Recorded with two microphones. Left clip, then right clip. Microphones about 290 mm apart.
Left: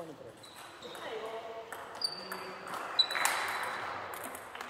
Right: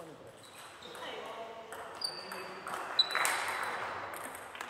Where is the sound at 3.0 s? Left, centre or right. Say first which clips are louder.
Left 1 dB; centre.